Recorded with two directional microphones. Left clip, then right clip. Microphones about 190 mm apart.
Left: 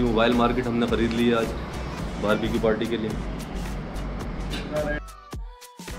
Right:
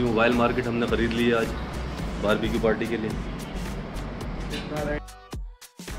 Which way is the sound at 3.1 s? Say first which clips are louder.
Left 1 dB; centre (ahead or behind).